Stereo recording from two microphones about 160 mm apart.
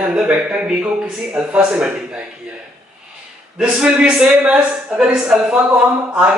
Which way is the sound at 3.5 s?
5° right (ahead or behind).